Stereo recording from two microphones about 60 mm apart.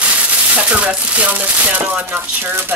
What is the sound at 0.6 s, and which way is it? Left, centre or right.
Speech, right.